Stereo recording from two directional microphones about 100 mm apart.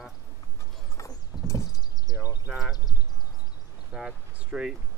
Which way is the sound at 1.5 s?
35° left (ahead or behind).